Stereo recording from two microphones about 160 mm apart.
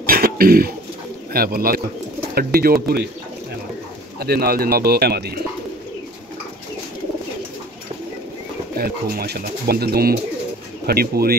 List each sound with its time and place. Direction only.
0.0 s bird: 65° right (ahead or behind)
1.3 s speech: 70° right (ahead or behind)
4.2 s speech: 75° right (ahead or behind)
8.7 s speech: 70° right (ahead or behind)